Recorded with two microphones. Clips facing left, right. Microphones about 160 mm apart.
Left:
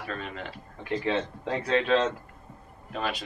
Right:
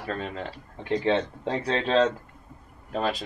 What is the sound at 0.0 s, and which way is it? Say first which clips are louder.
Speech: right 4 dB; 35° right (ahead or behind).